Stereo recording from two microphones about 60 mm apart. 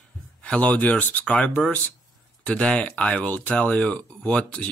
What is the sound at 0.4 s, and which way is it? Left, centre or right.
Speech, left.